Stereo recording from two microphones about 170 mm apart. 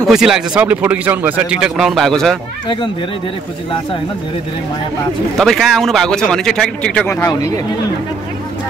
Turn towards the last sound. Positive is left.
turn(degrees=15)  # may be behind; listen again after turning